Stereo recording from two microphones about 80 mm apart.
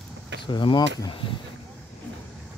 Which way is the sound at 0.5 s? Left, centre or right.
Left.